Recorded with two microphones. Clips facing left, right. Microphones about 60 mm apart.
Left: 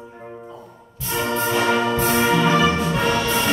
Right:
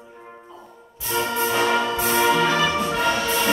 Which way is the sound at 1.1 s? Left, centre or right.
Left.